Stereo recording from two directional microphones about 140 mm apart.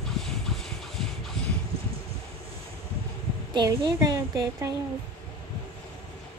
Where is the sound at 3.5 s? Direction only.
30° right (ahead or behind).